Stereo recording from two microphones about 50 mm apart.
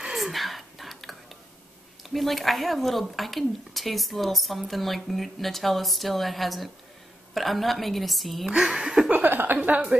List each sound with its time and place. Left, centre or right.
0.1 s whispering: centre
2.0 s a woman's voice: centre
8.5 s speech: centre
9.1 s a sound: right
9.6 s speech: right